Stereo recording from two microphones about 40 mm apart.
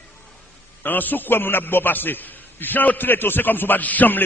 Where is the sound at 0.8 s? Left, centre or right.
Left.